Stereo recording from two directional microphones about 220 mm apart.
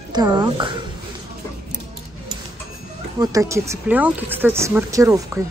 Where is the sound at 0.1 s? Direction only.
20° right (ahead or behind).